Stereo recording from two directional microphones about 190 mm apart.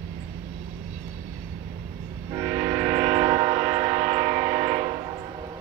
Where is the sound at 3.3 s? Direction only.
25° right (ahead or behind).